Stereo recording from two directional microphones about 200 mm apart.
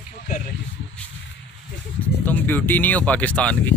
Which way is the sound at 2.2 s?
10° left (ahead or behind).